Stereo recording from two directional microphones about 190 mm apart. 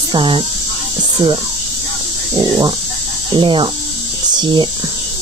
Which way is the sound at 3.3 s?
25° right (ahead or behind).